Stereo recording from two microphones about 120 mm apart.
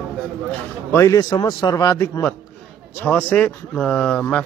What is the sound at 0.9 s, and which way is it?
A man's voice, 25° left (ahead or behind).